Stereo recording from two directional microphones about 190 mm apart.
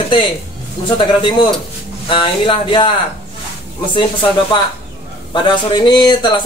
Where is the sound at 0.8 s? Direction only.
25° left (ahead or behind).